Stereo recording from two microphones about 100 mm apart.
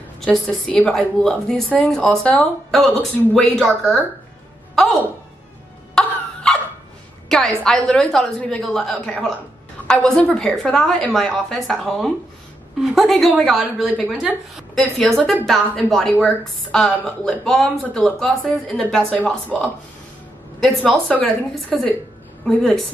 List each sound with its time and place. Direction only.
0.2 s a woman's voice: 5° left (ahead or behind)
5.9 s dog: 5° left (ahead or behind)
7.2 s a woman's voice: 5° left (ahead or behind)
20.6 s a woman's voice: 5° left (ahead or behind)
21.1 s a woman's voice: 15° left (ahead or behind)